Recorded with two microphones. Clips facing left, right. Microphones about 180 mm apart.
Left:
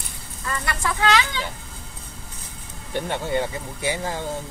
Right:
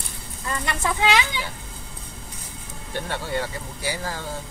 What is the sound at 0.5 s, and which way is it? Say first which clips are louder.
Speech: right 1 dB; 20° right (ahead or behind).